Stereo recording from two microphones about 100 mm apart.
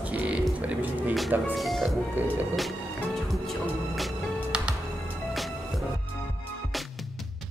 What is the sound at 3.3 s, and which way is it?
Music, centre (ahead or behind).